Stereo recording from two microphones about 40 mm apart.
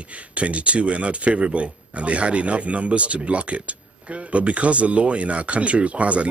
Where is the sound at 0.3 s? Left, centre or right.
Right.